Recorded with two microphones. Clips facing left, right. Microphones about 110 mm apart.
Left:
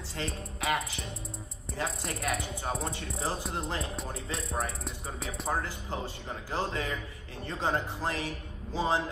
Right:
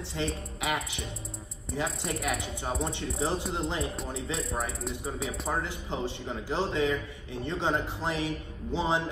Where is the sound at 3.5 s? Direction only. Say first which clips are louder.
Right 3 dB; 25° right (ahead or behind).